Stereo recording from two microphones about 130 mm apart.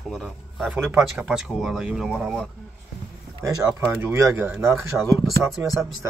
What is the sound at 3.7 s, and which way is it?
Speech, 15° right (ahead or behind).